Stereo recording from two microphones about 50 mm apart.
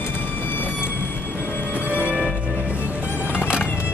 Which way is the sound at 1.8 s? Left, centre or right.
Right.